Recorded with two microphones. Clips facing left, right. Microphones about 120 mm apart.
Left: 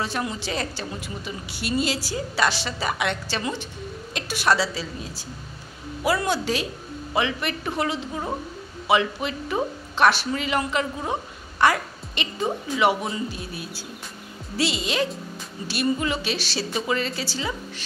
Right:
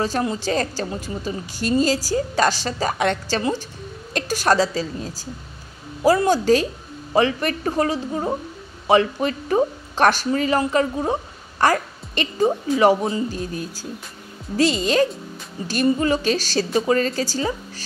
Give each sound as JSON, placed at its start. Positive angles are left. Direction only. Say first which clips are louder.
{"t": 0.0, "sound": "a woman's voice", "louder": "right 6 dB", "side_deg": -35}